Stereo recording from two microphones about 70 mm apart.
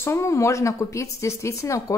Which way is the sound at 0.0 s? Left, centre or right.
Left.